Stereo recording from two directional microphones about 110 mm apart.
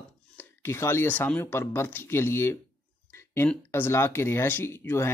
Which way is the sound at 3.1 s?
25° left (ahead or behind).